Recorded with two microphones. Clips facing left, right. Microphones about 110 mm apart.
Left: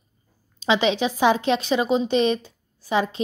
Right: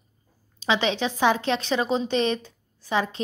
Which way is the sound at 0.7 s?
15° left (ahead or behind).